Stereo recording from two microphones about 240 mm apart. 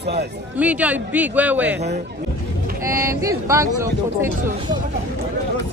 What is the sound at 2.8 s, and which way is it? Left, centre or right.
Speech, centre.